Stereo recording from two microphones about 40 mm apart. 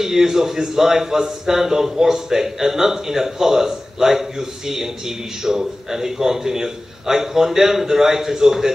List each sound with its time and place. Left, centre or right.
0.0 s a man's voice: centre